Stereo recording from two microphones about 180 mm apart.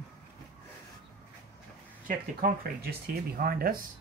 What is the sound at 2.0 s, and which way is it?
Speech, 50° right (ahead or behind).